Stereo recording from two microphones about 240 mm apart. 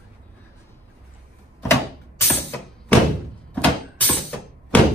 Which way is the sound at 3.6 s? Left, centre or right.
Centre.